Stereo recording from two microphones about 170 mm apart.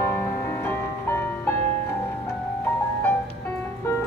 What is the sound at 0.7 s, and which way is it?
Music, 15° left (ahead or behind).